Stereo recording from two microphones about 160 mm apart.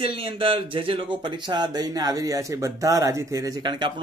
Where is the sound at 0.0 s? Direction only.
35° right (ahead or behind).